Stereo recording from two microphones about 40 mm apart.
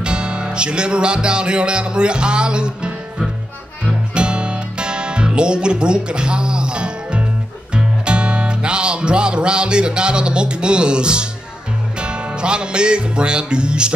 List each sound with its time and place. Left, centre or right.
0.0 s music: right